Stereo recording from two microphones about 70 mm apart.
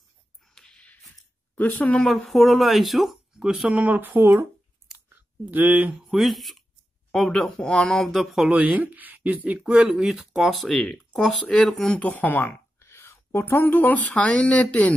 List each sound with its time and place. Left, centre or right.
0.6 s a sound: centre
1.5 s speech: left
2.0 s speech: centre; by 5.9 s right
6.0 s speech: centre
8.5 s speech: right; by 12.0 s centre
12.0 s speech: left
14.0 s speech: centre